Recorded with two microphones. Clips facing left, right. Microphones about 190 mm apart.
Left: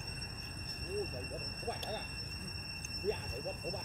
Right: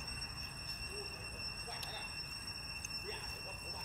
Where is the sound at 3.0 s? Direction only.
55° left (ahead or behind).